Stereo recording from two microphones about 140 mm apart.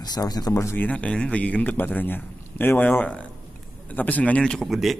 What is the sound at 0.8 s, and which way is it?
A man's voice, 10° left (ahead or behind).